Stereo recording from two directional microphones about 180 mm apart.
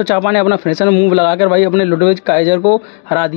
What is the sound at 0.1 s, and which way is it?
A man's voice, 15° left (ahead or behind).